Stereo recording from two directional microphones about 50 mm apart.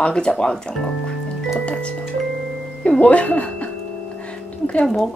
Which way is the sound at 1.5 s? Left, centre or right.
Left.